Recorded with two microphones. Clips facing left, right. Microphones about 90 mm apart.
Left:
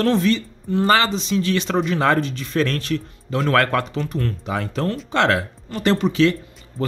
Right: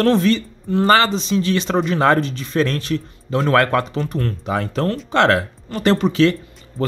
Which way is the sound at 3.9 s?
40° right (ahead or behind).